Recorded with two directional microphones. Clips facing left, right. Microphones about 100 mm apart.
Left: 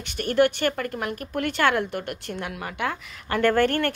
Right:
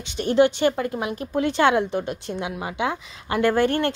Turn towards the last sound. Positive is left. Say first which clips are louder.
# right 1 dB
turn(degrees=-15)  # may be behind; listen again after turning